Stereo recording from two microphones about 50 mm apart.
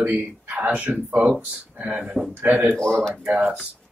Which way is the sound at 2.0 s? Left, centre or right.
Centre.